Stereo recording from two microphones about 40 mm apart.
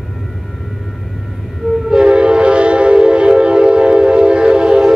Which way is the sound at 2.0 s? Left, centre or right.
Right.